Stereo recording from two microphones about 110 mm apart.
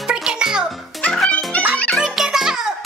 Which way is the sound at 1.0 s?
10° left (ahead or behind).